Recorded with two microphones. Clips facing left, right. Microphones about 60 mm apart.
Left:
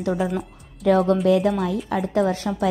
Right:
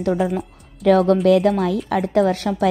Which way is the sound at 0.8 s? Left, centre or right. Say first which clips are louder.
Right 3 dB; right.